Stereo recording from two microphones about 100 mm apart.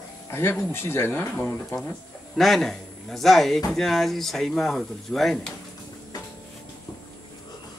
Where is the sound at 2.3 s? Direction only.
5° left (ahead or behind).